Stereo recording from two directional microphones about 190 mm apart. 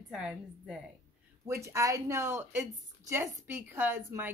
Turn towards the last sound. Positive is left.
turn(degrees=-10)  # may be behind; listen again after turning